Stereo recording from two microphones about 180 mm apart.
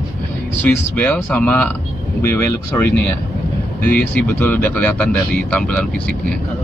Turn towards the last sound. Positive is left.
turn(degrees=5)  # may be behind; listen again after turning